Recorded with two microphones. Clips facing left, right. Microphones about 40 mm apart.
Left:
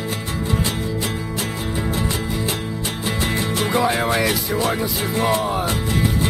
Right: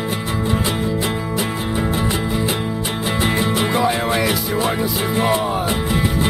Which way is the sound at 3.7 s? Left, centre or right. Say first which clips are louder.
Left 2 dB; centre.